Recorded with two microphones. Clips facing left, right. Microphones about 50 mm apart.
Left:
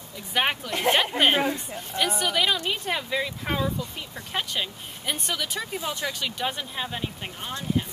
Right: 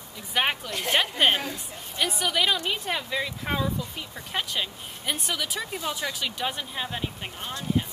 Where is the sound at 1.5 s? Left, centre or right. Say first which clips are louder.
Left 6 dB; centre.